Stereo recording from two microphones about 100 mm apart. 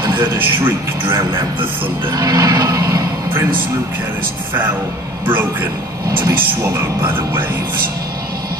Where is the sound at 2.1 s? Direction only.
40° right (ahead or behind).